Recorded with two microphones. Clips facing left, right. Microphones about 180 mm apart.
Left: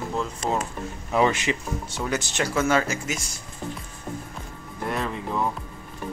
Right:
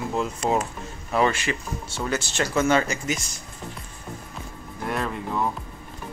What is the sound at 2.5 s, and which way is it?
Speech, 5° left (ahead or behind).